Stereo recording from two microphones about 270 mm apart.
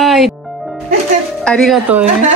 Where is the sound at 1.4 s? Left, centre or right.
Centre.